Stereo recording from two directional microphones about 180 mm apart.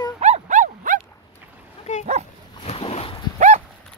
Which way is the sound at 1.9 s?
40° left (ahead or behind).